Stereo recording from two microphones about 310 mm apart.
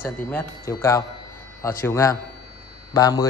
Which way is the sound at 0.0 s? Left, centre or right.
Centre.